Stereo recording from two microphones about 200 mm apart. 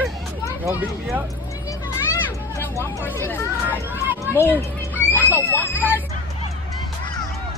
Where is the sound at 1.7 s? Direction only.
15° left (ahead or behind).